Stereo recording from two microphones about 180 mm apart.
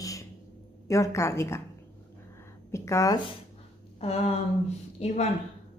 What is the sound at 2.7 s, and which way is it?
Speech, 15° left (ahead or behind).